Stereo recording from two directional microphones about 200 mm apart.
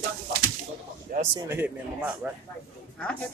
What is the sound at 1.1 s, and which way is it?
Speech, 45° right (ahead or behind).